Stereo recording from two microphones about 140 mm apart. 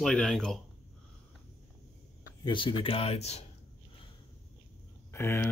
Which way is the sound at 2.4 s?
35° left (ahead or behind).